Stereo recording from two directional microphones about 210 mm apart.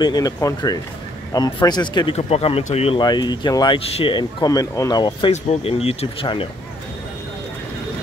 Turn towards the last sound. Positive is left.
turn(degrees=25)  # may be behind; listen again after turning